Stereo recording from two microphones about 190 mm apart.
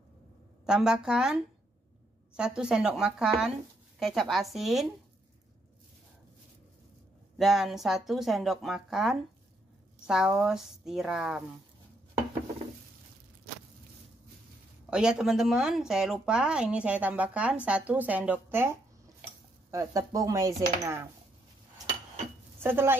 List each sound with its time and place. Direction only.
0.7 s speech: 5° right (ahead or behind)
7.3 s speech: centre (ahead or behind)
14.9 s speech: 5° right (ahead or behind)
22.6 s speech: 10° right (ahead or behind)